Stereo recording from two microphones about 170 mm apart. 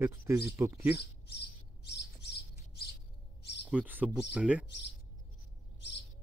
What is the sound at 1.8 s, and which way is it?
Squawk, 75° left (ahead or behind).